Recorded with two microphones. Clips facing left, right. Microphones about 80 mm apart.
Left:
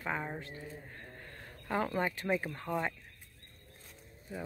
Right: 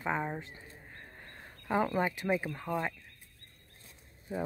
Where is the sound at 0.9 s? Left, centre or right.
Centre.